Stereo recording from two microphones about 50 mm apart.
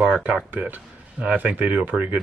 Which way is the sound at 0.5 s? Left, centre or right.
Right.